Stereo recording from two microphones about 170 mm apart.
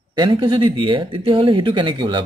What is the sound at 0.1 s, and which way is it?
Speech, 30° right (ahead or behind).